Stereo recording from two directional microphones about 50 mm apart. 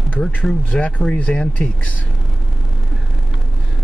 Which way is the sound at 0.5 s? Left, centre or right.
Left.